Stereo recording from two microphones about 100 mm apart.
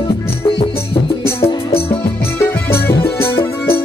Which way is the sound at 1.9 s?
20° left (ahead or behind).